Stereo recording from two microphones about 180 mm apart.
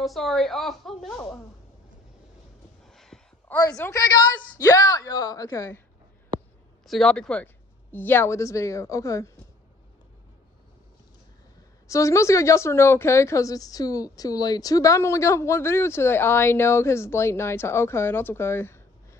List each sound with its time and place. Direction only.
0.0 s a woman's voice: centre (ahead or behind)
2.8 s a sound: centre (ahead or behind); by 4.1 s 15° left (ahead or behind)
4.6 s a woman's voice: 20° left (ahead or behind)
6.9 s a woman's voice: 5° left (ahead or behind)
11.9 s a woman's voice: 15° left (ahead or behind)